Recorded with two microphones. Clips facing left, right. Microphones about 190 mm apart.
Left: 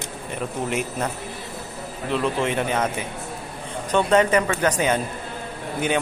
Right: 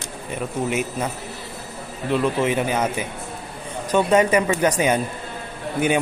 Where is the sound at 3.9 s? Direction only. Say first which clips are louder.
Right 1 dB; 10° right (ahead or behind).